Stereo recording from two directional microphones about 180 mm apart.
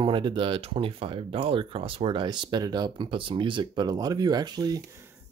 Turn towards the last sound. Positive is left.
turn(degrees=-20)  # may be behind; listen again after turning